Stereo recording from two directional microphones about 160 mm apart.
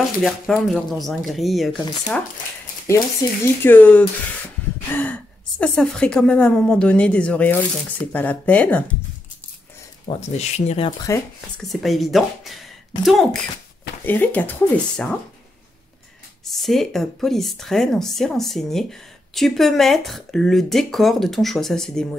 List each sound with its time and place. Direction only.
0.2 s speech: centre (ahead or behind)
3.2 s a woman's voice: 20° left (ahead or behind)
10.0 s speech: 45° left (ahead or behind)
11.1 s speech: 20° left (ahead or behind)
11.7 s speech: centre (ahead or behind)
14.0 s a woman's voice: 10° left (ahead or behind)
16.4 s speech: centre (ahead or behind)